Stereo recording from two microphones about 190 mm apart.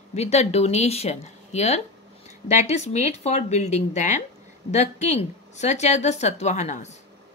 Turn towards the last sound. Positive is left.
turn(degrees=35)  # may be behind; listen again after turning